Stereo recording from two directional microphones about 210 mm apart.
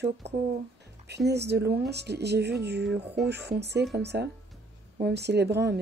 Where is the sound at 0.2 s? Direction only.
55° right (ahead or behind).